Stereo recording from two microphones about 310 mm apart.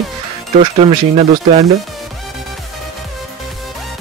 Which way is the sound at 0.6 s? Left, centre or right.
Centre.